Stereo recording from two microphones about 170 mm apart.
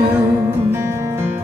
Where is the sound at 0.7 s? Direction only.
15° right (ahead or behind).